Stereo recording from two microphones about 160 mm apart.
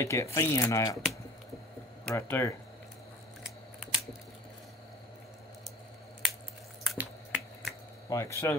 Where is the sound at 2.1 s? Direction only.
15° left (ahead or behind).